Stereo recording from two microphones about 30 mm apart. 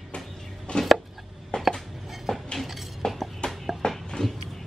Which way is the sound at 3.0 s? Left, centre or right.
Centre.